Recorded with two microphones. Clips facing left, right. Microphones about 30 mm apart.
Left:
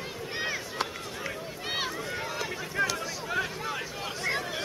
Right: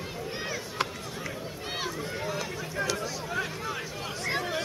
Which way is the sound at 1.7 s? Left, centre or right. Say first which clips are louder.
Left 2 dB; centre.